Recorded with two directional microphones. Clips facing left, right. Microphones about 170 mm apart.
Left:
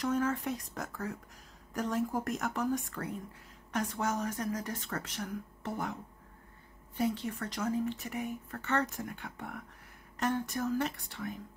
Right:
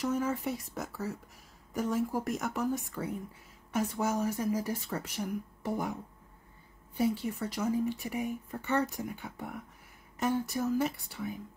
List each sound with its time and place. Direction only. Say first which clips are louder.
0.0 s speech: even; 10° right (ahead or behind)
7.0 s speech: right 2 dB; 10° right (ahead or behind)